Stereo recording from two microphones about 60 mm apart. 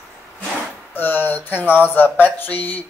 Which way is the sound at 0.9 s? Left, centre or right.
Left.